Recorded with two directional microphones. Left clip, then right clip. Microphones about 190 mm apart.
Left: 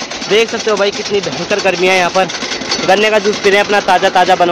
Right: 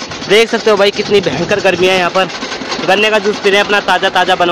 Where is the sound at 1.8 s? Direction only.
5° right (ahead or behind).